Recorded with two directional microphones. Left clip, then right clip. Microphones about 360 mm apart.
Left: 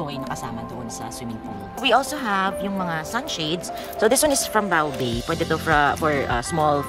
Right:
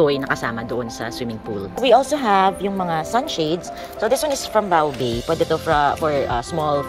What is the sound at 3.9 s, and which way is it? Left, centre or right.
Speech, centre.